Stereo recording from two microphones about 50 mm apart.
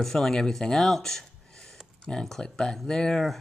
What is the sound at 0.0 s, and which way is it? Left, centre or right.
Speech, centre.